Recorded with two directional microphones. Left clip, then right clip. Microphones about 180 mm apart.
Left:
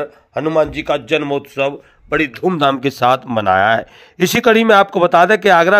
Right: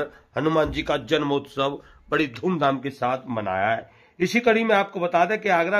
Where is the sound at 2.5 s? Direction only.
40° left (ahead or behind).